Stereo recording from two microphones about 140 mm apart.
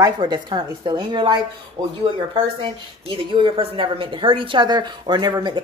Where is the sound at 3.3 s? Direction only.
35° right (ahead or behind).